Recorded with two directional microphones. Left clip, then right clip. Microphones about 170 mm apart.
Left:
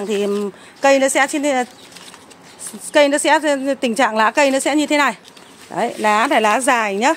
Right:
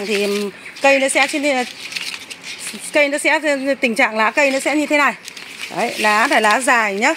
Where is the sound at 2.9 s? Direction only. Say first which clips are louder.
Left 2 dB; 10° left (ahead or behind).